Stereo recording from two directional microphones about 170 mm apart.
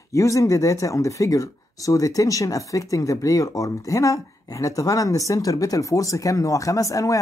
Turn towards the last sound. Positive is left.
turn(degrees=20)  # may be behind; listen again after turning